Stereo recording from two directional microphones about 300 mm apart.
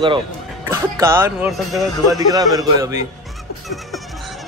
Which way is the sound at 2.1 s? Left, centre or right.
Centre.